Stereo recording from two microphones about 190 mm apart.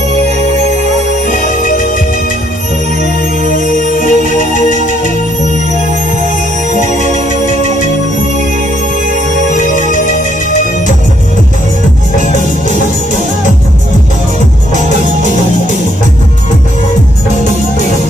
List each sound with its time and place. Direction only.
1.4 s music: 45° left (ahead or behind)
3.0 s music: 45° left (ahead or behind)
9.4 s music: 45° left (ahead or behind)
12.3 s music: 40° left (ahead or behind)